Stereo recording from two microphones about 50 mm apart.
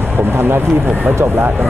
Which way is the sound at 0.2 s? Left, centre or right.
Right.